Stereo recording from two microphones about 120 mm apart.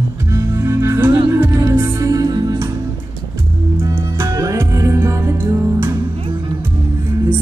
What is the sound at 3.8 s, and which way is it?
Music, 25° right (ahead or behind).